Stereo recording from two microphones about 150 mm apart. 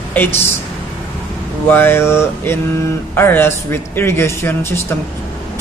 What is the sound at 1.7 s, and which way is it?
A man's voice, 15° left (ahead or behind).